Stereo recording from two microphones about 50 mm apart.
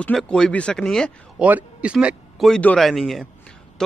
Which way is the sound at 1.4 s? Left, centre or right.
Right.